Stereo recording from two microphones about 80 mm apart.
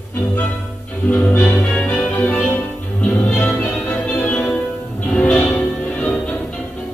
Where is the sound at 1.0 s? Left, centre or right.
Left.